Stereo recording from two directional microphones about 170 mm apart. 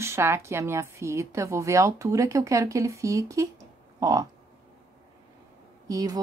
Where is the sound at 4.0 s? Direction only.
20° right (ahead or behind).